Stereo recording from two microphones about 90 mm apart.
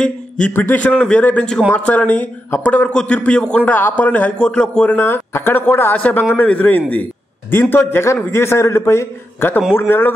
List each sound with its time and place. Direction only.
0.5 s a man's voice: 20° left (ahead or behind)
4.9 s a man's voice: 25° left (ahead or behind)